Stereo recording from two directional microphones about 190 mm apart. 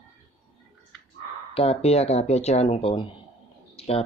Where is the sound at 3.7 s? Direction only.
30° left (ahead or behind).